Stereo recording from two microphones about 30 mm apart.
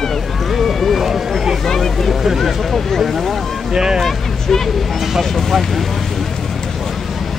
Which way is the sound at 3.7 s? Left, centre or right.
Right.